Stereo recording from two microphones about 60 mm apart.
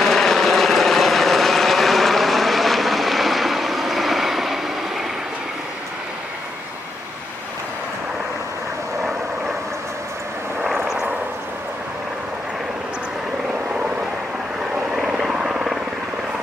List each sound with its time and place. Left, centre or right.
0.0 s vehicle: centre
14.9 s helicopter: centre